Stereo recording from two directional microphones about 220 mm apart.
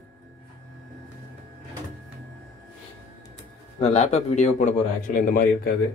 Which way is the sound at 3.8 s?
30° left (ahead or behind).